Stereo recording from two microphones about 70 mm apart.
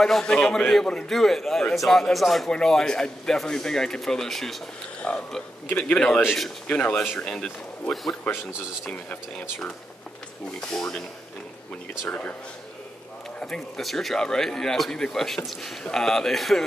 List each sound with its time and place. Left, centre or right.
0.0 s a man's voice: centre
5.0 s a man's voice: centre
10.6 s a man's voice: centre
12.1 s a man's voice: centre
13.4 s speech: centre